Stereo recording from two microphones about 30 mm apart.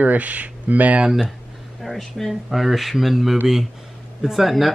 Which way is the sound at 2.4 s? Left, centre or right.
Centre.